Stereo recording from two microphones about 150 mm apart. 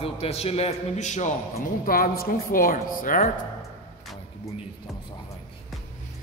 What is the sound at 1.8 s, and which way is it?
A woman's voice, 75° left (ahead or behind).